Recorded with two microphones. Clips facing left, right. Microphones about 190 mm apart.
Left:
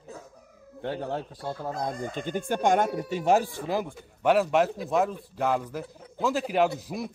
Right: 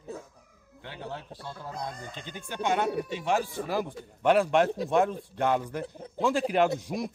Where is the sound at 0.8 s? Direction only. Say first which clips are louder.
Left 8 dB; 50° left (ahead or behind).